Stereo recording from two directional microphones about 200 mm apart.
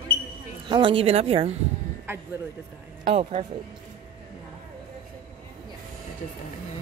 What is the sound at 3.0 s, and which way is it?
Speech, 35° right (ahead or behind).